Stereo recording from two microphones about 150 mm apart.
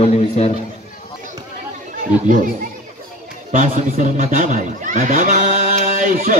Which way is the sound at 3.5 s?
55° right (ahead or behind).